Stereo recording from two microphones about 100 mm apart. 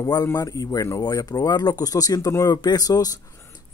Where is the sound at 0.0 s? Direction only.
40° left (ahead or behind).